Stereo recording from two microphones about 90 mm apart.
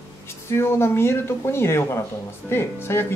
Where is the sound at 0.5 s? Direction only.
30° left (ahead or behind).